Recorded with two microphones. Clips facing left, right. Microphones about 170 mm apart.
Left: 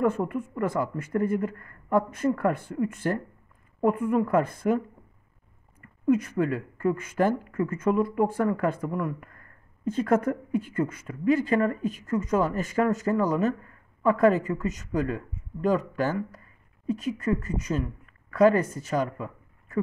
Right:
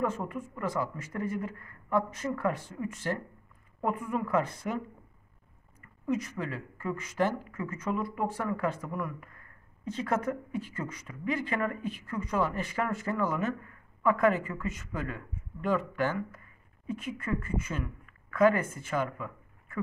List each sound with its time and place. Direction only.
0.0 s speech: 55° left (ahead or behind)
6.0 s a woman's voice: 55° left (ahead or behind); by 19.8 s 35° left (ahead or behind)